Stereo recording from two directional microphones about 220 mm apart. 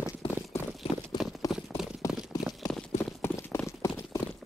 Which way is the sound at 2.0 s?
15° left (ahead or behind).